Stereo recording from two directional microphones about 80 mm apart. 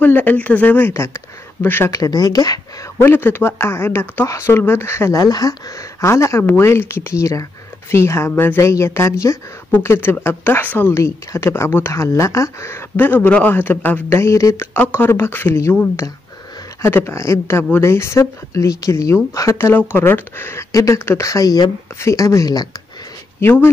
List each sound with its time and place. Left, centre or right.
0.0 s speech: left
1.9 s speech: left
3.0 s speech: left
5.1 s speech: left
5.9 s speech: left
11.0 s speech: left
14.7 s speech: left
16.8 s speech: left
19.9 s speech: left
20.7 s speech: left
23.4 s speech: left